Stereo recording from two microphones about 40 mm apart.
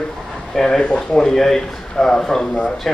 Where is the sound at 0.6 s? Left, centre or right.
Centre.